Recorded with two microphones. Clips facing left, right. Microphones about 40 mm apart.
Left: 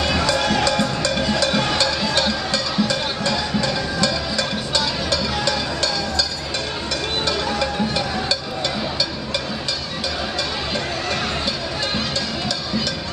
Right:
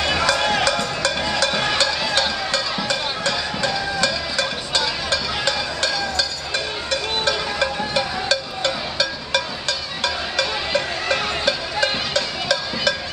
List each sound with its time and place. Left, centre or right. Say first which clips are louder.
0.0 s music: even; centre
2.7 s music: left 2 dB; right
8.3 s a sound: right 2 dB; right